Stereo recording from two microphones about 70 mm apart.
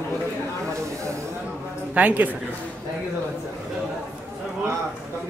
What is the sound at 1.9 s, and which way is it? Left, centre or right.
Speech, right.